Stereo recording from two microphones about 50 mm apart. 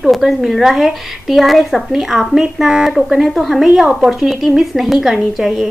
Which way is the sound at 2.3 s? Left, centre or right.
Centre.